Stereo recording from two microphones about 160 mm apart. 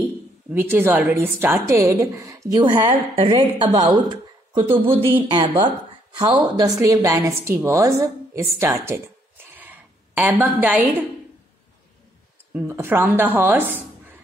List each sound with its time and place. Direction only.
0.5 s a woman's voice: 10° right (ahead or behind)
12.5 s a woman's voice: 15° right (ahead or behind)